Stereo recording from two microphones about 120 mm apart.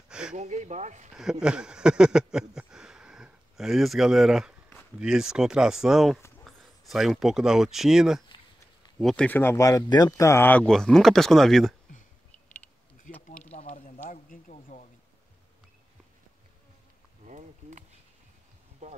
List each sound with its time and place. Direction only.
0.3 s speech: 90° right
1.1 s speech: 5° right (ahead or behind)
9.0 s speech: 5° left (ahead or behind)
10.7 s speech: 5° left (ahead or behind)
13.1 s speech: 90° left
13.4 s a sound: 75° left (ahead or behind)
17.3 s a sound: 90° right